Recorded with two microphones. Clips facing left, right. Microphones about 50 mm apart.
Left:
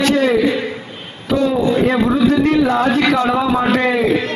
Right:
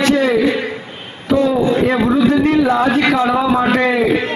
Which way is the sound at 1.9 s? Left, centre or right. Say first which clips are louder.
Right 1 dB; centre.